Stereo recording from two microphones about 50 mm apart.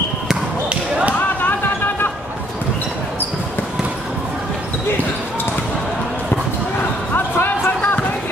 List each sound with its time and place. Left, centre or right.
0.7 s basketball bounce: right
7.2 s basketball bounce: left